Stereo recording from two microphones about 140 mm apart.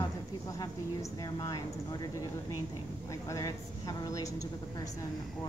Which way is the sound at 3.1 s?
25° left (ahead or behind).